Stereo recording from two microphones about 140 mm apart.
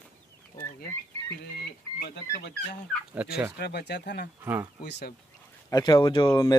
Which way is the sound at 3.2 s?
10° right (ahead or behind).